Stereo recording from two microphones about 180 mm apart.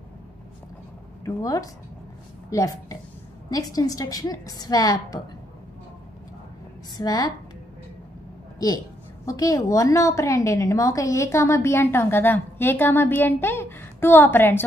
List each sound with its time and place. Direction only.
1.2 s a woman's voice: 20° left (ahead or behind)
7.0 s a woman's voice: 20° left (ahead or behind)
8.5 s a woman's voice: 20° left (ahead or behind)